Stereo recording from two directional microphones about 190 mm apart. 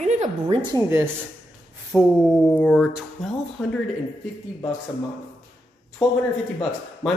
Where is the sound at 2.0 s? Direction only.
5° left (ahead or behind).